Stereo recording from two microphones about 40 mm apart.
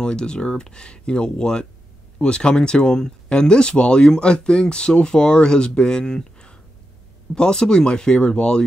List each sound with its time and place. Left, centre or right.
0.0 s speech: left